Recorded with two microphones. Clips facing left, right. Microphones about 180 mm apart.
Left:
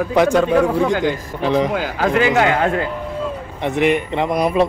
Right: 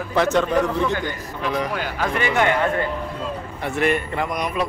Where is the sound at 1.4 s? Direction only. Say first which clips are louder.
Left 7 dB; 20° left (ahead or behind).